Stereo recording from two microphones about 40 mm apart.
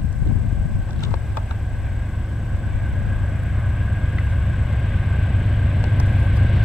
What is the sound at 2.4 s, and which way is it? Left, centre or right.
Vehicle, centre.